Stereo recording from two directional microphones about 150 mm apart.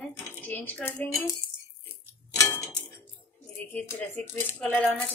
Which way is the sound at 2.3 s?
20° left (ahead or behind).